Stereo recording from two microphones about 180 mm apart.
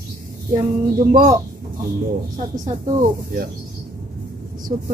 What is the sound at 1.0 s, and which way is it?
Speech, 45° right (ahead or behind).